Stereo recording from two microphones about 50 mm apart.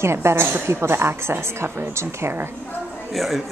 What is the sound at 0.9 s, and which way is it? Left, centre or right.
A woman's voice, right.